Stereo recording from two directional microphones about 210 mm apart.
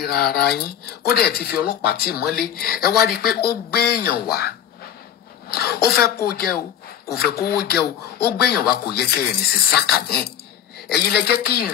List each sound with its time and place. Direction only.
0.0 s speech: 50° left (ahead or behind)